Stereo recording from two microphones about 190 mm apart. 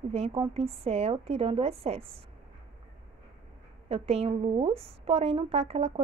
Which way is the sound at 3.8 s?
30° right (ahead or behind).